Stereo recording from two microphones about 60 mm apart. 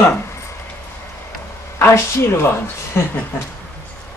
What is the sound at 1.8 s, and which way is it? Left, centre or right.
A woman's voice, left.